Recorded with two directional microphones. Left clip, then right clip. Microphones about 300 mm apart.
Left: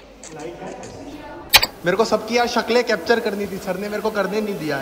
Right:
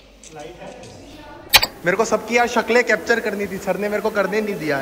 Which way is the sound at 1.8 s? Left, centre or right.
Centre.